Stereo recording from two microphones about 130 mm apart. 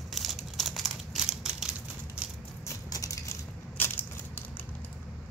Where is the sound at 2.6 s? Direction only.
25° left (ahead or behind).